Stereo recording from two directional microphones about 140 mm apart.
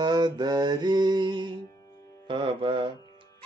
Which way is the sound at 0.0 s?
30° right (ahead or behind).